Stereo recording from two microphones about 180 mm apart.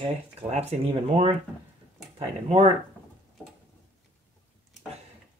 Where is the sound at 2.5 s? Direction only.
35° right (ahead or behind).